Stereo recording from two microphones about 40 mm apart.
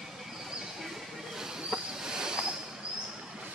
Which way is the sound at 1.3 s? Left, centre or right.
Centre.